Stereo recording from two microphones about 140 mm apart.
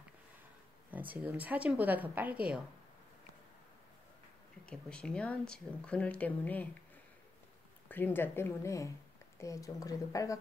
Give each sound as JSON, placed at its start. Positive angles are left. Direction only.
{"t": 0.9, "sound": "speech", "side_deg": -10}
{"t": 4.6, "sound": "speech", "side_deg": 5}
{"t": 7.9, "sound": "speech", "side_deg": 15}